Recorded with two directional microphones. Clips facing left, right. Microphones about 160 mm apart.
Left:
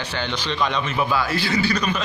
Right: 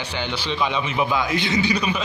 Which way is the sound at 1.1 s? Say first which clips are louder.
Left 1 dB; 20° right (ahead or behind).